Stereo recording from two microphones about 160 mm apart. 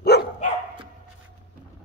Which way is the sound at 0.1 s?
90° left.